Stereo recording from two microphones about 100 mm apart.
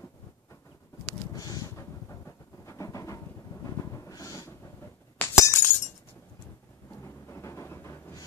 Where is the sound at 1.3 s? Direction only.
40° left (ahead or behind).